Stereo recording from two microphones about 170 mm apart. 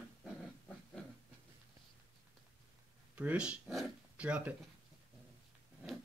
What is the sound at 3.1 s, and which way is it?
Speech, 10° right (ahead or behind).